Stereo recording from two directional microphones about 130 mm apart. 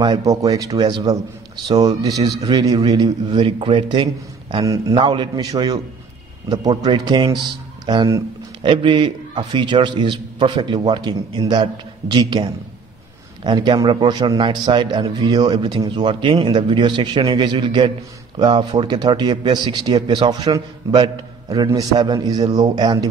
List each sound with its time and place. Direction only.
0.0 s a man's voice: 30° right (ahead or behind)
4.6 s speech: 25° right (ahead or behind)
5.0 s a man's voice: 35° right (ahead or behind)